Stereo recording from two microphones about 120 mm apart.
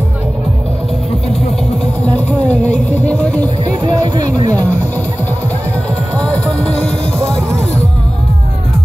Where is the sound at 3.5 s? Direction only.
40° right (ahead or behind).